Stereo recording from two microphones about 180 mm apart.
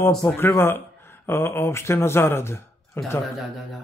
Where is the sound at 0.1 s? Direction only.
5° left (ahead or behind).